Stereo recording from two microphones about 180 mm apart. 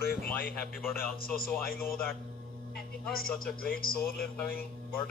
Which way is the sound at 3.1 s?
55° left (ahead or behind).